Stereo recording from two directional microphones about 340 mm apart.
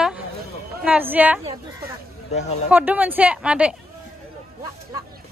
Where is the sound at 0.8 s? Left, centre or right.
Centre.